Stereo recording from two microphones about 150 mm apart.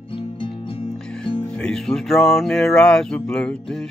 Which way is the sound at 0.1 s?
35° left (ahead or behind).